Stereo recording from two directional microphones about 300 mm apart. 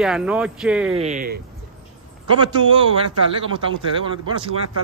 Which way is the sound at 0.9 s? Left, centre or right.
Right.